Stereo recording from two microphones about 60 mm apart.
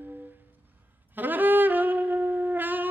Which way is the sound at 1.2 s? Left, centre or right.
Right.